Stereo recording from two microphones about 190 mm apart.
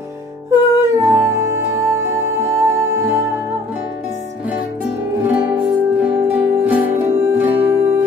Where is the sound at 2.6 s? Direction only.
10° right (ahead or behind).